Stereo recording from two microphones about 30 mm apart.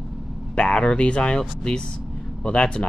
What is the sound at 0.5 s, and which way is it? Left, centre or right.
Speech, left.